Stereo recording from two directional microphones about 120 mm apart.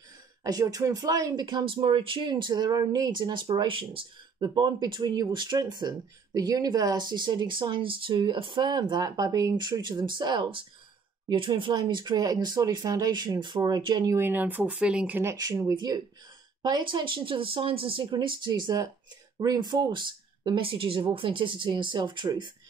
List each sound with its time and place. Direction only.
0.4 s speech: 30° right (ahead or behind)
14.1 s speech: 15° right (ahead or behind)
15.2 s speech: 30° right (ahead or behind)